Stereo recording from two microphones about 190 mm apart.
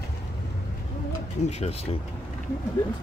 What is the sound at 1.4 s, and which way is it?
Speech, 35° left (ahead or behind).